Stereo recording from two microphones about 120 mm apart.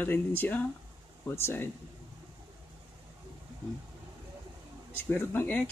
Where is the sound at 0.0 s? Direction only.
15° left (ahead or behind).